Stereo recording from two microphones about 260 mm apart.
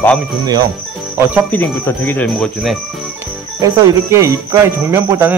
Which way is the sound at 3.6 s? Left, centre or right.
Centre.